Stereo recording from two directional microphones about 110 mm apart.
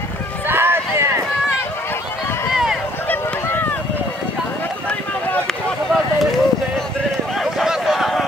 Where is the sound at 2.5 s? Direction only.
Centre (ahead or behind).